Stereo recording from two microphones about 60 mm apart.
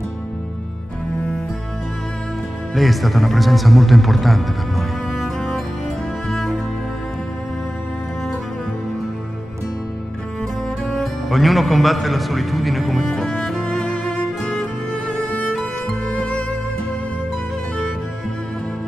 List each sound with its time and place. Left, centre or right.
2.7 s speech: centre
6.3 s music: centre
11.0 s a man's voice: centre
13.1 s music: centre